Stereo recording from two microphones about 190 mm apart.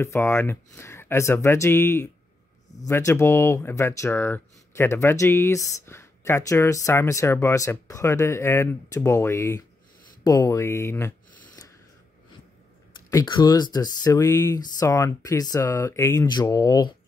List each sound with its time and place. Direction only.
0.0 s speech: 15° left (ahead or behind)
10.2 s a sound: 20° left (ahead or behind)
13.1 s speech: 20° left (ahead or behind)